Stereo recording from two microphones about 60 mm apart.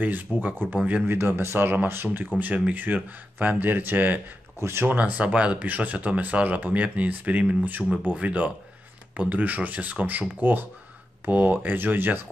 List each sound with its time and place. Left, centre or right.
0.0 s speech: right
4.6 s speech: right
4.8 s speech: right